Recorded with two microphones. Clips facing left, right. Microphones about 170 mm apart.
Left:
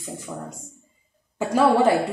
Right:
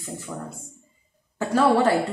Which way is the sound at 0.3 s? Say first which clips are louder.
Even; 10° left (ahead or behind).